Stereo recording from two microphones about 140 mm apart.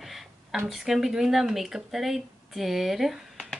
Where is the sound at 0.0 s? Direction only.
Centre (ahead or behind).